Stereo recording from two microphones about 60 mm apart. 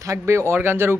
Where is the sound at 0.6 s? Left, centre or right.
Right.